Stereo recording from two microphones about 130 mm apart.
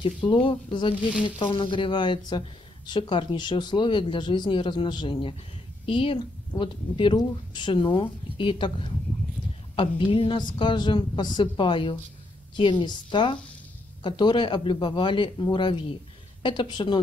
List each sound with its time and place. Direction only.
0.0 s a woman's voice: 40° left (ahead or behind)